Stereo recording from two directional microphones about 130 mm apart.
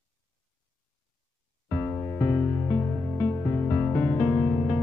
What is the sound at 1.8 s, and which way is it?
Music, 20° left (ahead or behind).